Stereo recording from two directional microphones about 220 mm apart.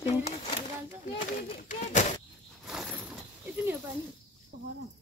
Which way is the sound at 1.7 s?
35° left (ahead or behind).